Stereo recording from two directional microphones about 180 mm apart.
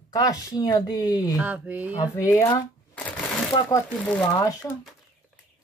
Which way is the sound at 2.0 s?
15° left (ahead or behind).